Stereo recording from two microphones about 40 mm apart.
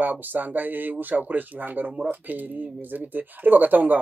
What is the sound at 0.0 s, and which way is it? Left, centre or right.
Speech, right.